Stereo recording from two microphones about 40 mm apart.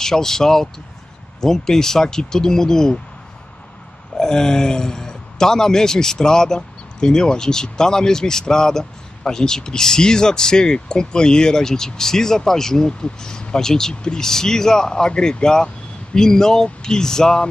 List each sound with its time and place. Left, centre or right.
0.0 s speech: centre
4.2 s speech: centre